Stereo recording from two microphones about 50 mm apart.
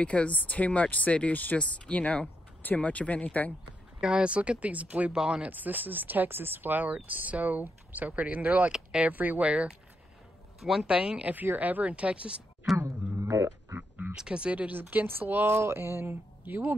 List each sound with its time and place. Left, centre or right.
0.0 s speech: left
4.0 s speech: right
5.1 s speech: centre
5.5 s speech: right
9.4 s speech: right
10.6 s speech: centre
10.9 s speech: right
12.7 s mantra: right
14.1 s speech: centre
14.5 s speech: right
16.4 s speech: right